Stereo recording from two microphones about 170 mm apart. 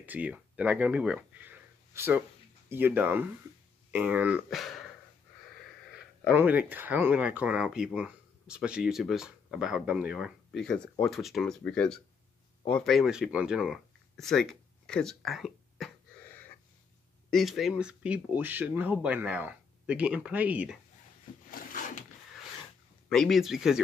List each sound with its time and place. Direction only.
0.0 s speech: 10° right (ahead or behind)
6.3 s speech: 10° right (ahead or behind)
16.3 s gasp: 10° left (ahead or behind)
17.3 s speech: centre (ahead or behind)
21.5 s zipper: 55° left (ahead or behind)
23.0 s speech: centre (ahead or behind)